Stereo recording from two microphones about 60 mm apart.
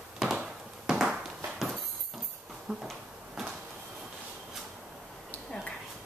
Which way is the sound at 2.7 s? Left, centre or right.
Centre.